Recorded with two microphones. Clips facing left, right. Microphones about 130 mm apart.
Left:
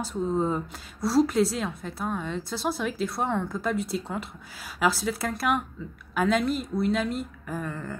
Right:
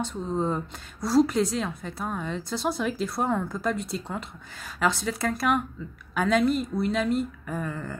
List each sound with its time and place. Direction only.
0.0 s a woman's voice: 5° left (ahead or behind)